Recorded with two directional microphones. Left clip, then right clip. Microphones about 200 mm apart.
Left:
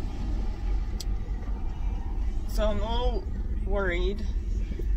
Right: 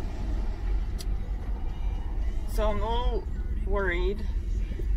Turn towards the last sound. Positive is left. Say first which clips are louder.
# even
turn(degrees=15)  # may be behind; listen again after turning